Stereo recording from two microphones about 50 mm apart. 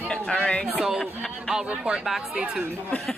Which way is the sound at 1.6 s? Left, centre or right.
Right.